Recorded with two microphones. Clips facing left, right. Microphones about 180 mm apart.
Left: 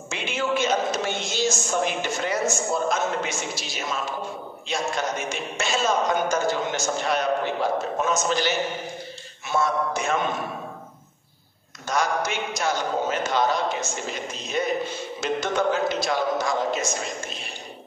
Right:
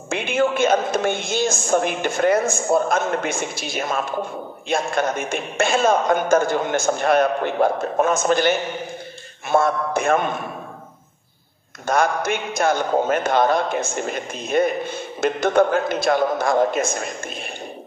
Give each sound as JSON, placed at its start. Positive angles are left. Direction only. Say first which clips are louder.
{"t": 0.1, "sound": "a man's voice", "louder": "right 6 dB", "side_deg": -55}
{"t": 11.8, "sound": "a man's voice", "louder": "right 5 dB", "side_deg": -55}